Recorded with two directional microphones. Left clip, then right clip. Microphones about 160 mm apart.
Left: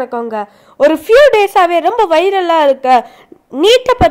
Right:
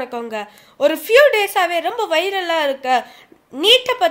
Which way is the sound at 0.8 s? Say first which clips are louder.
Left 5 dB; 45° left (ahead or behind).